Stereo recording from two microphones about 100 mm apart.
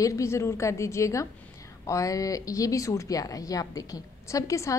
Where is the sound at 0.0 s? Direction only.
30° left (ahead or behind).